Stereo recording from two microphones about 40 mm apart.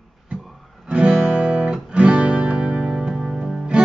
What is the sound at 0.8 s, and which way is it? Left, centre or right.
Music, right.